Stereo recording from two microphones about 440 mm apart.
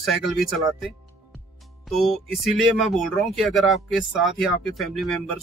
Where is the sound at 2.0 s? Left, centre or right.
Centre.